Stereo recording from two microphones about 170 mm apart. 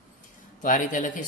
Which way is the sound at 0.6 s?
50° left (ahead or behind).